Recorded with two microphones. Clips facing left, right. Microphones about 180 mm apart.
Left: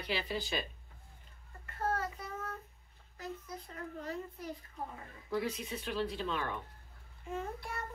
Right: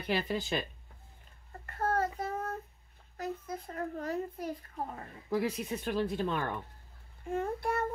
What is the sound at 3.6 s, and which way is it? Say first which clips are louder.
Speech: right 6 dB; 45° right (ahead or behind).